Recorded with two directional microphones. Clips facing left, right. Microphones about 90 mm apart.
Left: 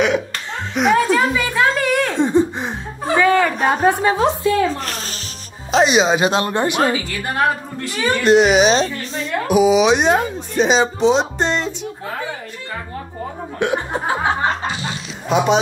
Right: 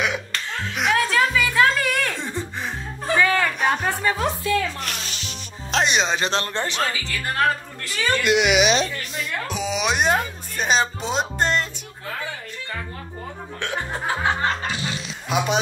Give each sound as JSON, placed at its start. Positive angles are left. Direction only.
{"t": 0.7, "sound": "a sound", "side_deg": 0}
{"t": 2.0, "sound": "laughter", "side_deg": 20}
{"t": 3.2, "sound": "a sound", "side_deg": 5}
{"t": 3.5, "sound": "a sound", "side_deg": 35}
{"t": 3.9, "sound": "speech", "side_deg": 25}
{"t": 5.7, "sound": "a woman's voice", "side_deg": 5}
{"t": 8.2, "sound": "a woman's voice", "side_deg": 35}
{"t": 9.5, "sound": "speech", "side_deg": 5}
{"t": 13.6, "sound": "laughter", "side_deg": 20}
{"t": 15.2, "sound": "speech", "side_deg": 35}